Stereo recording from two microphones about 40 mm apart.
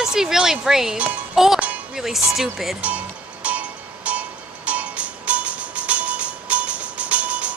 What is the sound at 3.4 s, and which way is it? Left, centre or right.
Music, right.